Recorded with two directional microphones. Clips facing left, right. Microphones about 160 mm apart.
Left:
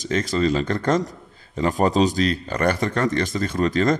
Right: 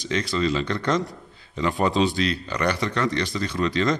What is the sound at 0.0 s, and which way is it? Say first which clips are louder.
A man's voice: left 3 dB; 45° left (ahead or behind).